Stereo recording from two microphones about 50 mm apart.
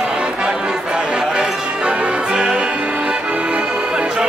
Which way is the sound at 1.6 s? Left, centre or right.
Right.